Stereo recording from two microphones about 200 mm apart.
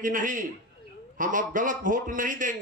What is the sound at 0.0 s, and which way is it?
Speech, 40° right (ahead or behind).